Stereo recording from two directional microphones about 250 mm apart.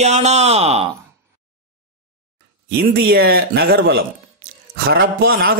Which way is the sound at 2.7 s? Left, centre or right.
Right.